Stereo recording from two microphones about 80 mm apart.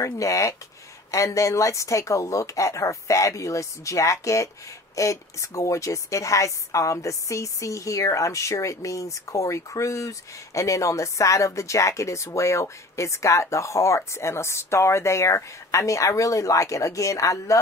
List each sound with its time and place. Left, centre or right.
0.0 s a woman's voice: left